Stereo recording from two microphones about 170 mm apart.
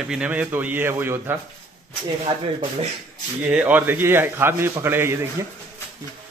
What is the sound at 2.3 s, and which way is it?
Speech, 25° right (ahead or behind).